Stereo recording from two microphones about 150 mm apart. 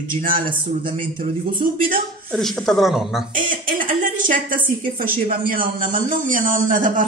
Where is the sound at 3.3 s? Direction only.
65° right (ahead or behind).